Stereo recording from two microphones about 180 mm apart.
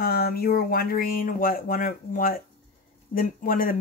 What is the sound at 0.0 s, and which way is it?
Speech, 55° left (ahead or behind).